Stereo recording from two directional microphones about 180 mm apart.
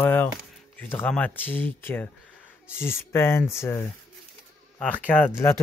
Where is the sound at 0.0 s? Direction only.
10° left (ahead or behind).